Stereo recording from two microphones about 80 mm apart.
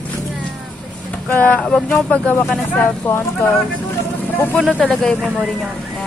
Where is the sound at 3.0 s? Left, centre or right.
Left.